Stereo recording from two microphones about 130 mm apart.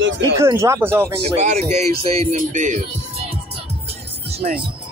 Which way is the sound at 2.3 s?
70° right (ahead or behind).